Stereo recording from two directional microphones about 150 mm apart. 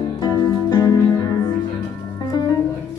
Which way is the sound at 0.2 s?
25° left (ahead or behind).